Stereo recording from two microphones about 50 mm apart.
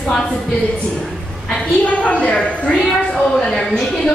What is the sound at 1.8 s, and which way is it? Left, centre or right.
A woman's voice, left.